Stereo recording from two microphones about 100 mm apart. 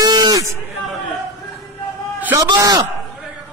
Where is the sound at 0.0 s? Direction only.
45° right (ahead or behind).